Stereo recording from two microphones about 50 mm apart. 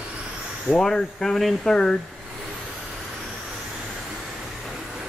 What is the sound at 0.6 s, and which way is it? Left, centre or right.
Speech, centre.